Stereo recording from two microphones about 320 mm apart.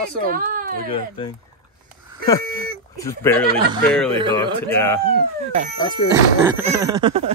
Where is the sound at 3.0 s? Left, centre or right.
Centre.